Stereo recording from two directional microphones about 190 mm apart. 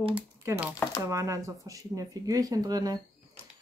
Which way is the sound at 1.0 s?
15° right (ahead or behind).